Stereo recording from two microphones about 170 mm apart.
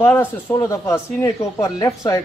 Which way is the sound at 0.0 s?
10° left (ahead or behind).